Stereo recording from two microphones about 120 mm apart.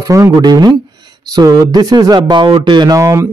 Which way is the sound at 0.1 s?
30° right (ahead or behind).